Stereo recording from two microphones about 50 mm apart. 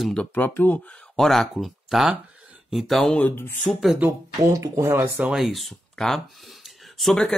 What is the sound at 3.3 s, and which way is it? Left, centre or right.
Speech, left.